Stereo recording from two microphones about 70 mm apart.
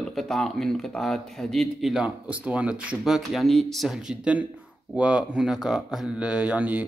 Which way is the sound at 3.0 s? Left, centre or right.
Centre.